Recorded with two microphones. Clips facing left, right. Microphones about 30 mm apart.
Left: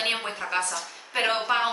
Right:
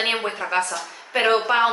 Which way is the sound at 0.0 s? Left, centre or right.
Centre.